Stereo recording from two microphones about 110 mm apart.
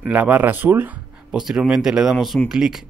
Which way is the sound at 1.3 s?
5° right (ahead or behind).